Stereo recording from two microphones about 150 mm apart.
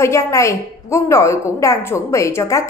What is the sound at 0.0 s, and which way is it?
A woman's voice, 20° left (ahead or behind).